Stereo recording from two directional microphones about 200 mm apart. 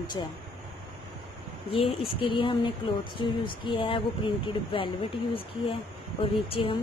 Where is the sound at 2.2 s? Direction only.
25° left (ahead or behind).